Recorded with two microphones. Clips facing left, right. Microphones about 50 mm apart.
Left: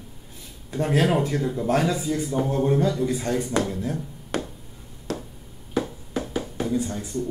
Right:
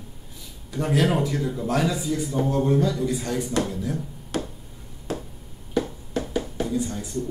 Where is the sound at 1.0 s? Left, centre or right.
Left.